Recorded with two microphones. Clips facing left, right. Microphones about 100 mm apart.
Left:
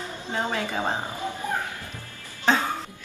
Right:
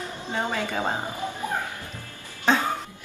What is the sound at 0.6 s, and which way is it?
Speech, 10° left (ahead or behind).